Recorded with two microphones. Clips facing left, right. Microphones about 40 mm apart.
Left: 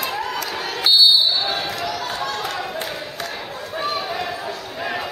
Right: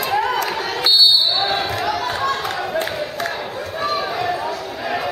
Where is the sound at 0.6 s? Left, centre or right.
Centre.